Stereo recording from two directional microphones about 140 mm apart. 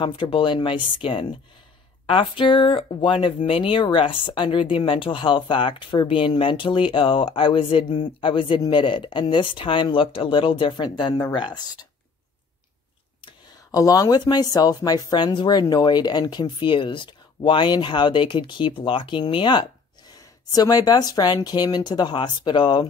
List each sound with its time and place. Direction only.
0.0 s speech: 35° left (ahead or behind)
13.2 s speech: 25° left (ahead or behind)